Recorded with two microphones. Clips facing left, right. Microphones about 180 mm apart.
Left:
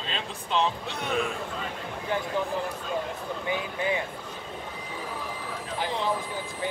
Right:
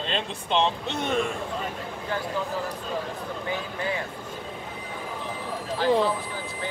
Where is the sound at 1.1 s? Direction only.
Centre (ahead or behind).